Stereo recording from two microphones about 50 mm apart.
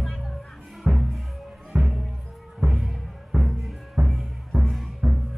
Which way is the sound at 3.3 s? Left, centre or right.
Right.